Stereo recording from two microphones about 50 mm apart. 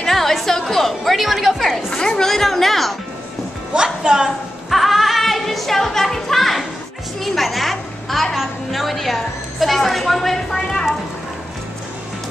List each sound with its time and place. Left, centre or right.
0.0 s music: centre
1.9 s music: centre
3.7 s speech: centre
4.6 s music: centre
7.2 s a woman's voice: centre